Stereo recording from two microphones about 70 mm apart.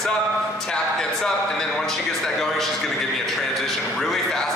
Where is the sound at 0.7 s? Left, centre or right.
Centre.